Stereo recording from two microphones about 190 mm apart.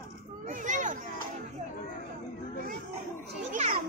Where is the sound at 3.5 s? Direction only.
40° right (ahead or behind).